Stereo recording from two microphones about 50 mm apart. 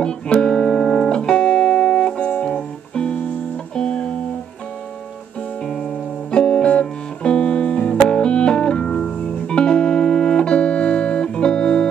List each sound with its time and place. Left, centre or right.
0.0 s music: centre
6.3 s music: centre